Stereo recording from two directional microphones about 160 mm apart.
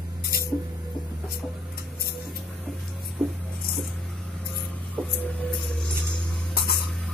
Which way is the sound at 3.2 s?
5° right (ahead or behind).